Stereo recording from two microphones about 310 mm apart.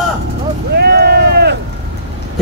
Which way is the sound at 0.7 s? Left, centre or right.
Right.